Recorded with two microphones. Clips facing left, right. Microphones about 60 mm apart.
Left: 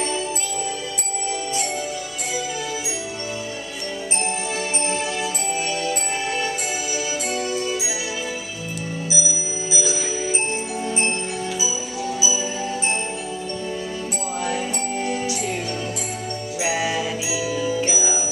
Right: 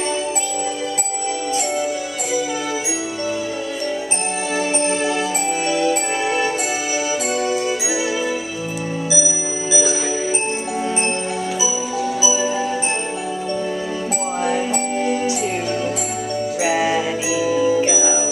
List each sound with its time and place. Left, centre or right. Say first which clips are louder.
4.6 s music: right 9 dB; right
14.4 s music: right 5 dB; right
16.6 s music: right 4 dB; centre